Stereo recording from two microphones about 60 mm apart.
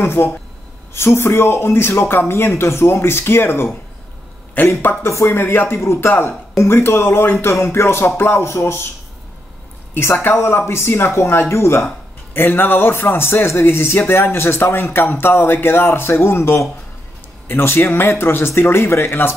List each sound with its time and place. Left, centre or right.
0.0 s speech: left
5.0 s speech: left
9.9 s speech: left
12.4 s speech: left